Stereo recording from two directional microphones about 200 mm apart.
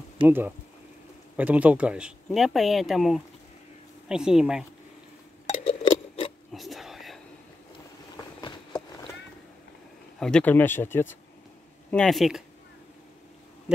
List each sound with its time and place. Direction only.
0.2 s speech: 10° right (ahead or behind)
5.5 s a sound: 30° left (ahead or behind)
6.5 s whispering: centre (ahead or behind)
8.4 s patter: 20° left (ahead or behind)
10.1 s speech: 5° left (ahead or behind)